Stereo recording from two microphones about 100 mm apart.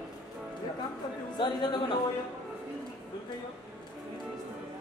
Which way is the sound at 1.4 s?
50° left (ahead or behind).